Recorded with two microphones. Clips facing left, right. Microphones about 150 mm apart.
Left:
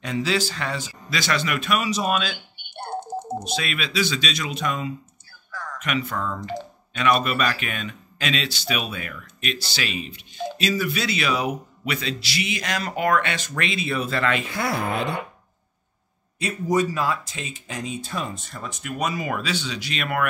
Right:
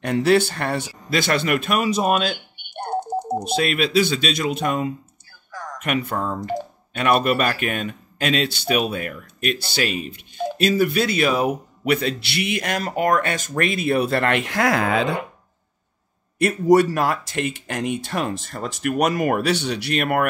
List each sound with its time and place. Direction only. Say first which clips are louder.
0.0 s speech: right 7 dB; 60° right (ahead or behind)
2.7 s typing: right 5 dB; 20° right (ahead or behind)
3.4 s speech: right 7 dB; 50° right (ahead or behind)
5.5 s a sound: right 2 dB; 15° right (ahead or behind)
5.8 s speech: right 3 dB; 55° right (ahead or behind); by 15.0 s 90° right
16.3 s speech: right 7 dB; 65° right (ahead or behind); by 20.2 s 50° right (ahead or behind)